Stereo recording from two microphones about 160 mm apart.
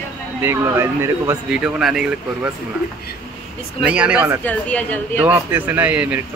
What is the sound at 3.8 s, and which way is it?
Speech, 10° right (ahead or behind).